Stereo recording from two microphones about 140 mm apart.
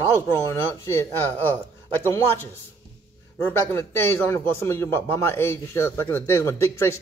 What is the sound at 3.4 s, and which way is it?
A man's voice, 15° left (ahead or behind).